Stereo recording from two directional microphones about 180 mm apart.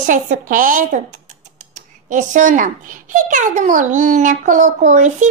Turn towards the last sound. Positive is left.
turn(degrees=-45)  # may be behind; listen again after turning